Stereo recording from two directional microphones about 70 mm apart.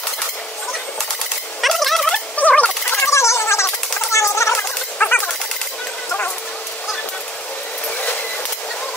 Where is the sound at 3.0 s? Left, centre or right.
Left.